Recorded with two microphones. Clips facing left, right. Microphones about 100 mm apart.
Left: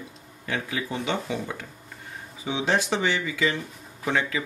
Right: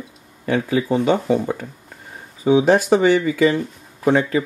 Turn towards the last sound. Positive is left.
turn(degrees=-40)  # may be behind; listen again after turning